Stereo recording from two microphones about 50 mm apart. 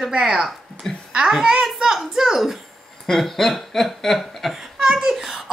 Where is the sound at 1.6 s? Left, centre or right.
Centre.